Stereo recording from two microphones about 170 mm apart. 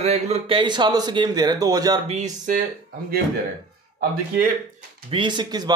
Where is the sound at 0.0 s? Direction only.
40° right (ahead or behind); by 2.0 s 20° right (ahead or behind).